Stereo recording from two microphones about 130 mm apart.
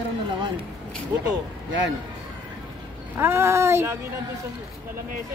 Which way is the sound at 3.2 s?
20° right (ahead or behind).